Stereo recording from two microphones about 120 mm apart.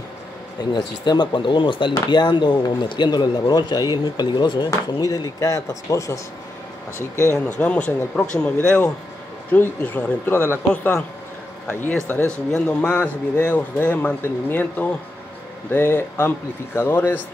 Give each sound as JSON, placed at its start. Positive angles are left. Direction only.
{"t": 0.6, "sound": "speech", "side_deg": 35}
{"t": 7.3, "sound": "a man's voice", "side_deg": 10}
{"t": 12.4, "sound": "a man's voice", "side_deg": 5}